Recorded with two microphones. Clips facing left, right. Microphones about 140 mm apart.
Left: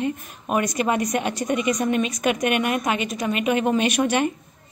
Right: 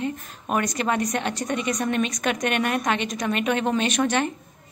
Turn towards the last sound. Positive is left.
turn(degrees=10)  # may be behind; listen again after turning